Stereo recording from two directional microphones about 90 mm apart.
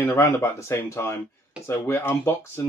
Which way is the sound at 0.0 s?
30° left (ahead or behind).